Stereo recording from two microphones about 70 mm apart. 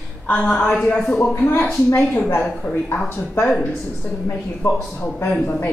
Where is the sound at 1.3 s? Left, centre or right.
Left.